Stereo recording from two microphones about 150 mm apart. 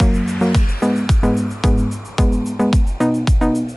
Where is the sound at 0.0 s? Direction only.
Centre (ahead or behind).